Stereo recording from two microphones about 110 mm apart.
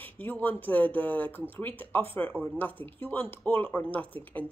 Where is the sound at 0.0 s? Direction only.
15° left (ahead or behind).